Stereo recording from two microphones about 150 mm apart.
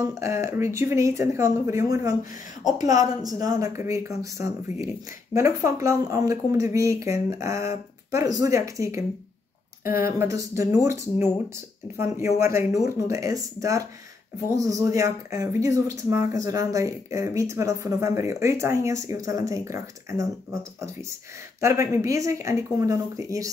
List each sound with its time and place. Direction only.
0.0 s speech: 20° right (ahead or behind)
21.5 s speech: 20° right (ahead or behind)